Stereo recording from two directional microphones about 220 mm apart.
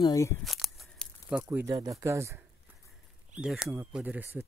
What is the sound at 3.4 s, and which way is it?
Speech, 5° right (ahead or behind).